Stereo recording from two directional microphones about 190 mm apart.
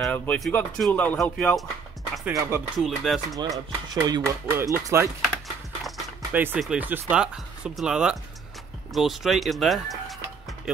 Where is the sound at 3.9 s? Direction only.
20° right (ahead or behind).